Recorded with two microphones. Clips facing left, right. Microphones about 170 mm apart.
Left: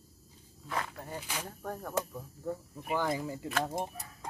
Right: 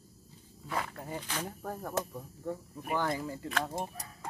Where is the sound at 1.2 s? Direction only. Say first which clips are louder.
Right 2 dB; 10° left (ahead or behind).